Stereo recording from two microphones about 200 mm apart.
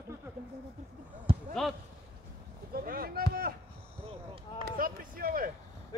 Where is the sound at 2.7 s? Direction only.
45° right (ahead or behind).